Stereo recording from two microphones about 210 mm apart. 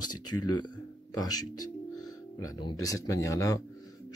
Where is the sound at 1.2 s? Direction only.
20° left (ahead or behind).